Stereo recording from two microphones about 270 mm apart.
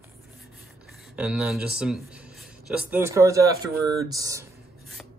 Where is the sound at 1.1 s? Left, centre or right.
Centre.